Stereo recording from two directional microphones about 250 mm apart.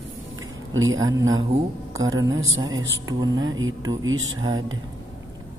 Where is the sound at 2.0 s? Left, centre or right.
Centre.